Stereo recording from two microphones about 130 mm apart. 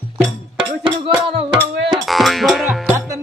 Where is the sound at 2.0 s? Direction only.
Centre (ahead or behind).